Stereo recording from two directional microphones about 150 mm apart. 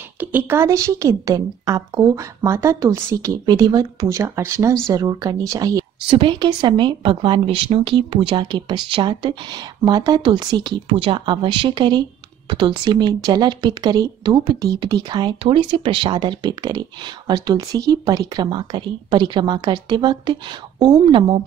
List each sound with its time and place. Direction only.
0.2 s a woman's voice: 10° right (ahead or behind)
6.0 s a woman's voice: 35° right (ahead or behind)